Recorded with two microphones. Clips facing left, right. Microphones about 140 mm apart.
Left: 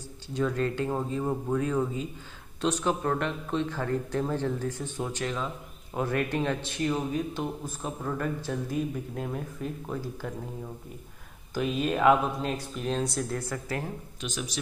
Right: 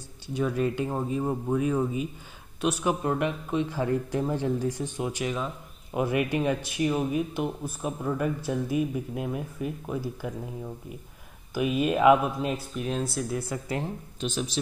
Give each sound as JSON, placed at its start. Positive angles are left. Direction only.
{"t": 0.3, "sound": "speech", "side_deg": -10}
{"t": 11.5, "sound": "speech", "side_deg": -10}
{"t": 14.2, "sound": "speech", "side_deg": -30}